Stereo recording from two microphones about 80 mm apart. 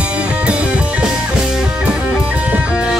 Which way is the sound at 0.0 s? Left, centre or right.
Centre.